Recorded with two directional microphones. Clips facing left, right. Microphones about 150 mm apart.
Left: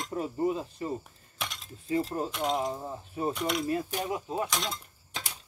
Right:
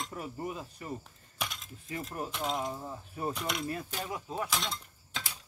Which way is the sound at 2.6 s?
20° left (ahead or behind).